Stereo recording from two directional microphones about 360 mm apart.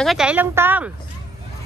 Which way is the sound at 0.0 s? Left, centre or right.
Centre.